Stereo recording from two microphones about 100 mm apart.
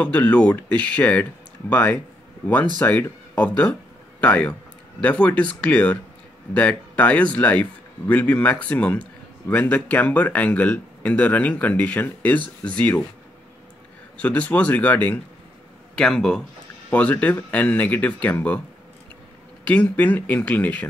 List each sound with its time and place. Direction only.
0.0 s speech: 15° left (ahead or behind)
14.2 s speech: 15° left (ahead or behind)
16.0 s speech: 5° left (ahead or behind)
19.6 s speech: 15° left (ahead or behind)